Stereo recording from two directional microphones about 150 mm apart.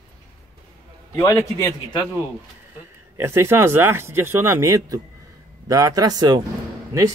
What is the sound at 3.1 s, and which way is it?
A man's voice, 15° right (ahead or behind).